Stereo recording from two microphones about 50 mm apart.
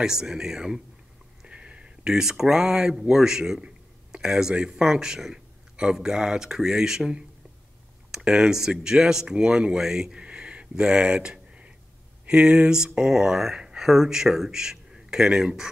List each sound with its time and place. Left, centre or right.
0.0 s speech: centre
1.5 s speech: right
10.2 s a sound: right
12.3 s speech: centre